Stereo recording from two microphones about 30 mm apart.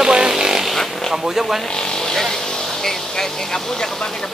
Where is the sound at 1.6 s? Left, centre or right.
Left.